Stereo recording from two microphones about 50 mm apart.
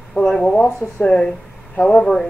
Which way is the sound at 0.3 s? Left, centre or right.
Centre.